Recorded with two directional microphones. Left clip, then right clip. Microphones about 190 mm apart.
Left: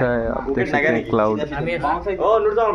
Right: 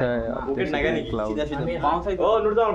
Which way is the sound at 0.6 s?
55° left (ahead or behind).